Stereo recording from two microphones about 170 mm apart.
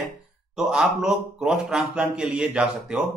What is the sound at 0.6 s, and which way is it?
Speech, 5° right (ahead or behind).